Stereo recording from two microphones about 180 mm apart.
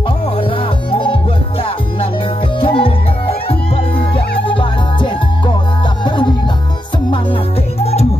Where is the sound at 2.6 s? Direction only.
30° left (ahead or behind).